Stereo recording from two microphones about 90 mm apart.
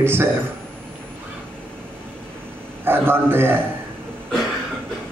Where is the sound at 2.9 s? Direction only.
25° right (ahead or behind).